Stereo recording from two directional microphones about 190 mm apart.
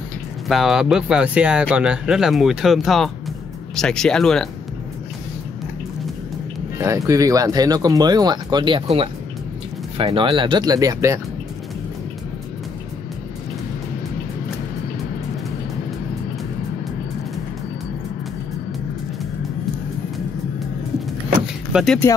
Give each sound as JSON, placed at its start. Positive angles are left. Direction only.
{"t": 0.5, "sound": "speech", "side_deg": 0}
{"t": 6.8, "sound": "speech", "side_deg": -15}
{"t": 21.7, "sound": "speech", "side_deg": 0}